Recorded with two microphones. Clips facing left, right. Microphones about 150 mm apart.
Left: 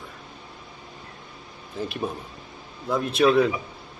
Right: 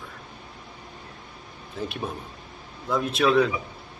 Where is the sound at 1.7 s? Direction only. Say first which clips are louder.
Left 2 dB; centre (ahead or behind).